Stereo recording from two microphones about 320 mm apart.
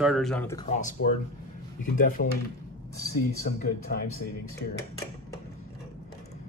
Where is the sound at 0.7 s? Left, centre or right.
Left.